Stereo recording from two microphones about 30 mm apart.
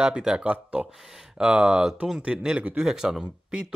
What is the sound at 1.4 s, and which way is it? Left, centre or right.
Speech, right.